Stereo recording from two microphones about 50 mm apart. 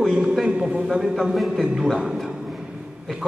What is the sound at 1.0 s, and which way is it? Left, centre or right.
Speech, centre.